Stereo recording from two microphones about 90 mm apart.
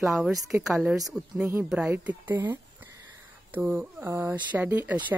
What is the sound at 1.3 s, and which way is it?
Speech, 20° right (ahead or behind).